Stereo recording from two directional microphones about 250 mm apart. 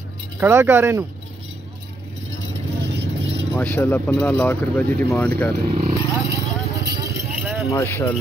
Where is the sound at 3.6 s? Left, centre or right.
Centre.